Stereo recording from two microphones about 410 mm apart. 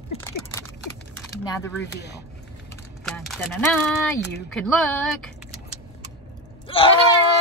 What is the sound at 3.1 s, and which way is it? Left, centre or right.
Speech, centre.